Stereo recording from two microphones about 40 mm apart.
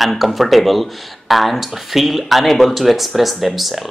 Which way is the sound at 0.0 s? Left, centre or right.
Centre.